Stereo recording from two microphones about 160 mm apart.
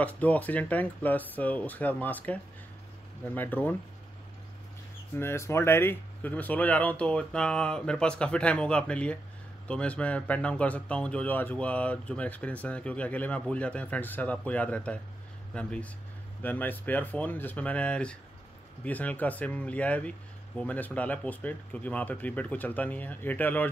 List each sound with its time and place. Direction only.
0.0 s speech: 10° left (ahead or behind)
5.1 s speech: 15° left (ahead or behind)